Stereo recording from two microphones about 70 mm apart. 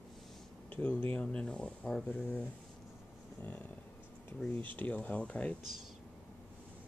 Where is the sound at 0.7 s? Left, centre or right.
Centre.